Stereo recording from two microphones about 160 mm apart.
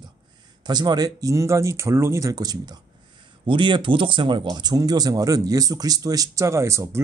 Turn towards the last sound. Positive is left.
turn(degrees=-15)  # may be behind; listen again after turning